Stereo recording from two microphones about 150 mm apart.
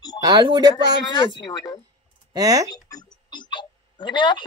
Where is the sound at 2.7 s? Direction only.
25° left (ahead or behind).